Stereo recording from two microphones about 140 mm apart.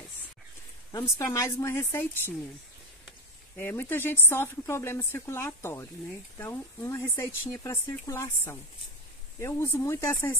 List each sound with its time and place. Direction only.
1.0 s a woman's voice: 20° left (ahead or behind)
3.5 s a woman's voice: 15° left (ahead or behind)